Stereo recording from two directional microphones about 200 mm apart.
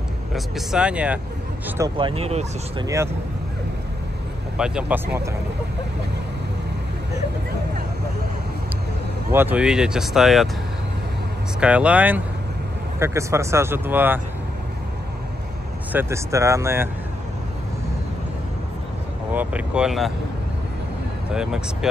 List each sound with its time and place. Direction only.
0.3 s speech: centre (ahead or behind)
2.0 s speech: 25° right (ahead or behind)
4.6 s speech: 5° right (ahead or behind)
9.3 s speech: 10° right (ahead or behind)
11.6 s speech: 5° right (ahead or behind)
15.9 s speech: 10° right (ahead or behind)
19.3 s speech: 5° right (ahead or behind)
21.3 s speech: 5° right (ahead or behind)